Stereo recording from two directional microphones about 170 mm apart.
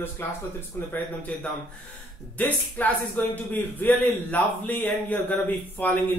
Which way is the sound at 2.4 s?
10° left (ahead or behind).